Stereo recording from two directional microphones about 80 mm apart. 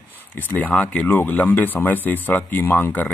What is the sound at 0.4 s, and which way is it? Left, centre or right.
Speech, left.